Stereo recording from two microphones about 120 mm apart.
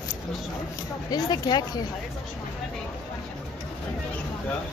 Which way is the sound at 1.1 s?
35° left (ahead or behind).